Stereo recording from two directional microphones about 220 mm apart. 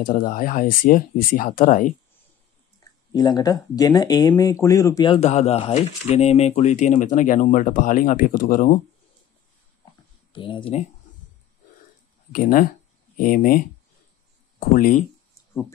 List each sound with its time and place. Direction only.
0.0 s speech: 40° left (ahead or behind)
3.1 s speech: 20° left (ahead or behind); by 8.7 s 40° left (ahead or behind)
10.3 s speech: 25° left (ahead or behind)
12.3 s speech: 40° left (ahead or behind)